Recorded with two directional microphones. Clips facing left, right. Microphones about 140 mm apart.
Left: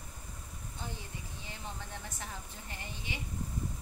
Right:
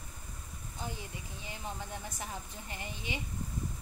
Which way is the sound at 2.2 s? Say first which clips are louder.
Right 3 dB; 15° right (ahead or behind).